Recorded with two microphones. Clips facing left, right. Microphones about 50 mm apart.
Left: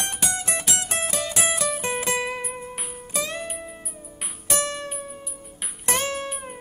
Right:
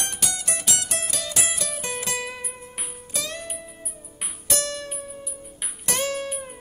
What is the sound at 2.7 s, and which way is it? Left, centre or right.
Music, centre.